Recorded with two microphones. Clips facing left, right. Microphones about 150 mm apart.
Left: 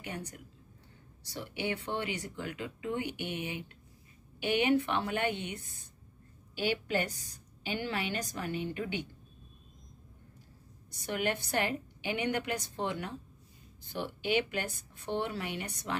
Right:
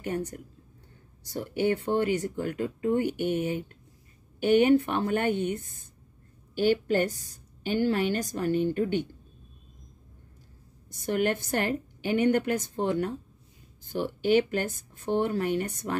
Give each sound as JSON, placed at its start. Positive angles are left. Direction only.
{"t": 0.0, "sound": "a woman's voice", "side_deg": -45}
{"t": 10.9, "sound": "a woman's voice", "side_deg": -50}